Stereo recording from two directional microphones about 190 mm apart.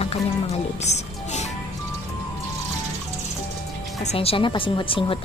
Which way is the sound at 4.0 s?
35° left (ahead or behind).